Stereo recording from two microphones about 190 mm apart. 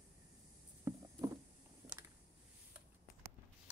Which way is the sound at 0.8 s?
20° right (ahead or behind).